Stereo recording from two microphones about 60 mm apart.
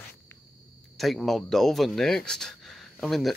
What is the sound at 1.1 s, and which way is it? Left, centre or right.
Speech, centre.